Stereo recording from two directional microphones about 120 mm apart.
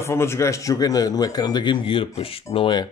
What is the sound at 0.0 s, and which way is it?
A man's voice, 20° left (ahead or behind).